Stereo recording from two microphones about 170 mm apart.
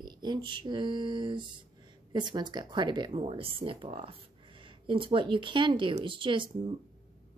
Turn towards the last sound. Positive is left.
turn(degrees=-30)  # may be behind; listen again after turning